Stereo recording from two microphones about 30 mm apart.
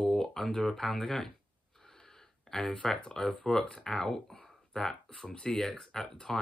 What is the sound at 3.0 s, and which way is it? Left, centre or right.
Speech, centre.